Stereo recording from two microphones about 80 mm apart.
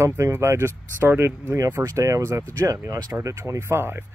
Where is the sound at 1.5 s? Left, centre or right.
Right.